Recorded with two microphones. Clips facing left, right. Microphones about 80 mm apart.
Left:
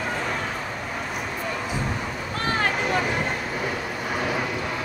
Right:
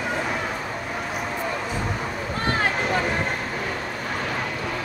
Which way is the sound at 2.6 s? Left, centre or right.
Centre.